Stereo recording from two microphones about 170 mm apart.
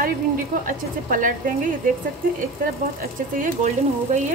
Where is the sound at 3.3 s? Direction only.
50° right (ahead or behind).